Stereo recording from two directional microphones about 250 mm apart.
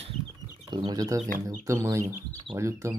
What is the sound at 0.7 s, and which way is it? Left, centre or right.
Speech, centre.